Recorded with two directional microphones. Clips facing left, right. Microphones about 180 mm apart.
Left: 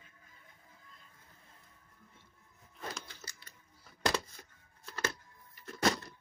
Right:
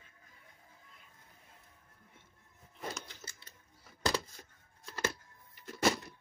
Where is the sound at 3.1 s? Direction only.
20° right (ahead or behind).